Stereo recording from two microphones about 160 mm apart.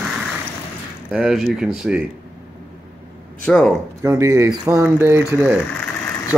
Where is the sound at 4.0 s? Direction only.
20° right (ahead or behind).